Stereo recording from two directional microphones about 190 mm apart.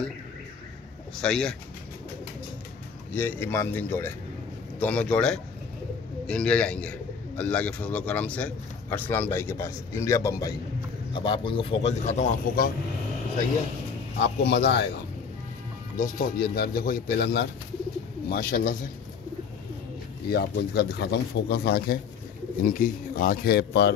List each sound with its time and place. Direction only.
1.2 s a man's voice: 5° left (ahead or behind)
3.1 s a man's voice: 10° left (ahead or behind); by 12.7 s 45° left (ahead or behind)
14.4 s speech: 65° left (ahead or behind)
16.0 s speech: 50° left (ahead or behind)
18.3 s speech: 50° left (ahead or behind)
20.2 s speech: 60° left (ahead or behind)
22.7 s speech: 45° left (ahead or behind)